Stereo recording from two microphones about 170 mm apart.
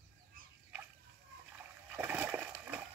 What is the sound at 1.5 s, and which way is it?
Splash, 10° right (ahead or behind).